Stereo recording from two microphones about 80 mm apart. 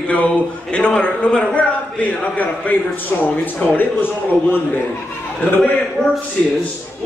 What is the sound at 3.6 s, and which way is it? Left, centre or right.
Speech, left.